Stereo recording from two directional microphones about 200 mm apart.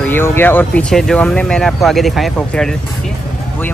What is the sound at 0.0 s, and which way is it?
Speech, 10° left (ahead or behind).